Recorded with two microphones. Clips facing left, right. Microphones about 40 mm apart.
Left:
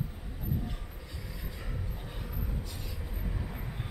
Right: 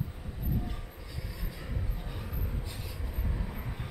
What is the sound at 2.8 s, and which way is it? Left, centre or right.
Vehicle, centre.